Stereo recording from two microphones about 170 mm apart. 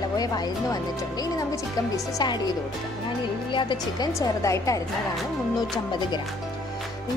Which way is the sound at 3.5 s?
30° left (ahead or behind).